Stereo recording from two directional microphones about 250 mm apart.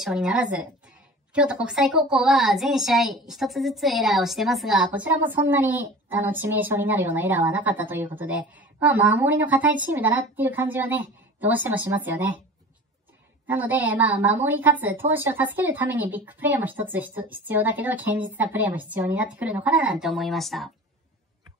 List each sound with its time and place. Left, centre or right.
0.0 s a woman's voice: centre
13.5 s a woman's voice: centre